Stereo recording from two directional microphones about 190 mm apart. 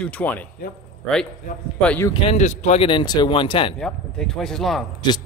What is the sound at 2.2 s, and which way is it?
Speech, 35° left (ahead or behind).